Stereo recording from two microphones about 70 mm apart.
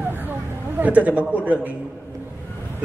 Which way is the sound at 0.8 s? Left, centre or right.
Right.